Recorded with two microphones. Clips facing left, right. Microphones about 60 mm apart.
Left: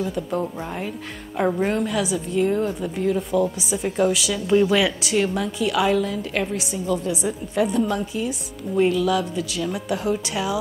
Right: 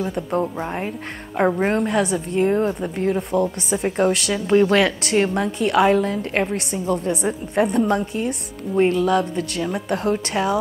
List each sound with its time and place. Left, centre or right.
0.3 s a woman's voice: right
2.4 s a woman's voice: right
4.3 s a woman's voice: right
4.6 s a woman's voice: right
5.1 s a woman's voice: right
6.5 s a woman's voice: right
8.7 s a woman's voice: right